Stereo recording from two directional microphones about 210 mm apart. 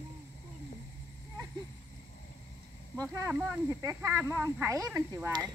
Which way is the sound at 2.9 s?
15° right (ahead or behind).